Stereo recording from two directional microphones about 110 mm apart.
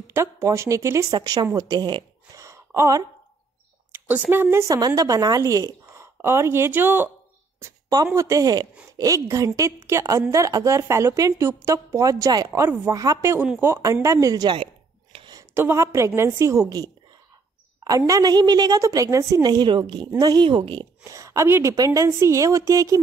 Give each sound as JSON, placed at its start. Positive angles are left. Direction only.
{"t": 0.0, "sound": "speech", "side_deg": -25}
{"t": 2.4, "sound": "a sound", "side_deg": -25}
{"t": 4.3, "sound": "a woman's voice", "side_deg": -20}
{"t": 7.9, "sound": "a woman's voice", "side_deg": -30}
{"t": 15.5, "sound": "a woman's voice", "side_deg": -20}
{"t": 21.1, "sound": "a woman's voice", "side_deg": -30}